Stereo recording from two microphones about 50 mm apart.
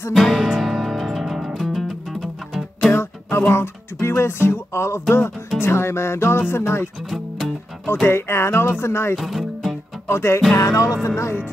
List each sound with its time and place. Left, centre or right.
0.1 s music: centre
2.9 s music: left
7.1 s music: centre
8.1 s music: left
9.1 s music: centre
10.0 s music: left
10.5 s music: left
11.1 s speech: left